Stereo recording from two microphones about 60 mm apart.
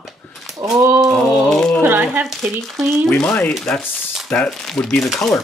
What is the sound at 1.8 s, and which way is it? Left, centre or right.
Speech, right.